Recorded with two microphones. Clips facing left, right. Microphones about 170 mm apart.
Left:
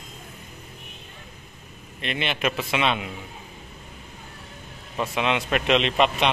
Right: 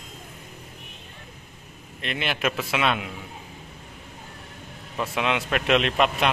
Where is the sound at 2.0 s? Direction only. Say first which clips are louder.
Left 1 dB; centre (ahead or behind).